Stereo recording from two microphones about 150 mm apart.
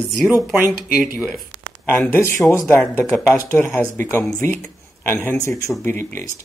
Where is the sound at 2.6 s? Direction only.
5° left (ahead or behind).